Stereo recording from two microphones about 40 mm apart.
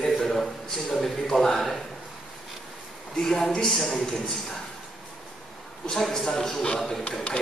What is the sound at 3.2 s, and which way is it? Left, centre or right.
A man's voice, centre.